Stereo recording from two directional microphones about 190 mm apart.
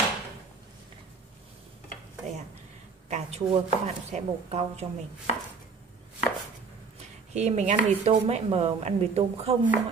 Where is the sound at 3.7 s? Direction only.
35° right (ahead or behind).